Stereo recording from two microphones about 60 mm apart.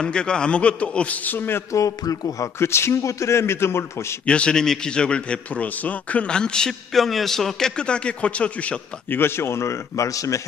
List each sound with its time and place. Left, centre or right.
0.0 s a man's voice: centre
1.3 s speech: left
1.7 s speech: left
2.6 s speech: left
4.3 s a man's voice: centre
6.9 s a man's voice: centre
9.1 s speech: left